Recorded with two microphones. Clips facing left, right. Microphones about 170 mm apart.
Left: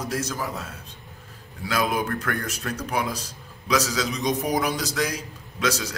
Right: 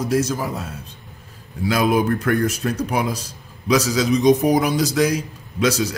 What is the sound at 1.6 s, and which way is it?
Speech, 20° right (ahead or behind).